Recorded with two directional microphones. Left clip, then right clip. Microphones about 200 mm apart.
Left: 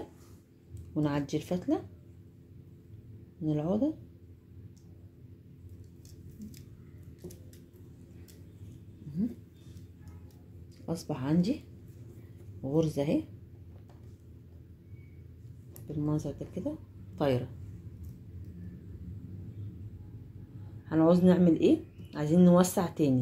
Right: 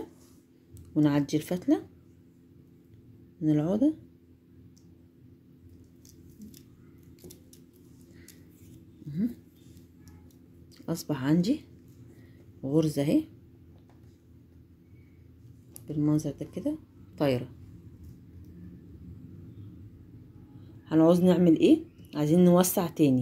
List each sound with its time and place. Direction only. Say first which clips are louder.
0.9 s speech: right 6 dB; 35° right (ahead or behind)
3.4 s speech: right 5 dB; 35° right (ahead or behind)
10.9 s speech: right 4 dB; 30° right (ahead or behind)
12.6 s speech: right 3 dB; 30° right (ahead or behind)
16.1 s speech: right 5 dB; 30° right (ahead or behind)
20.9 s speech: right 3 dB; 35° right (ahead or behind)